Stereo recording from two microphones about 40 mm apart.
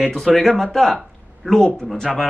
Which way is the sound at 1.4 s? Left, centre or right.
Left.